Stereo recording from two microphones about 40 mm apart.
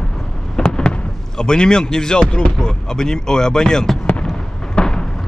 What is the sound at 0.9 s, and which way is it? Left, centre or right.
Speech, centre.